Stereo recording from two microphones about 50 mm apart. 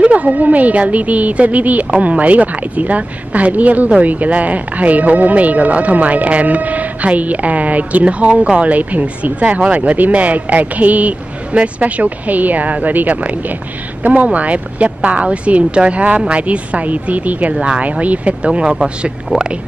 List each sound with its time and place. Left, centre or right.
0.0 s speech: right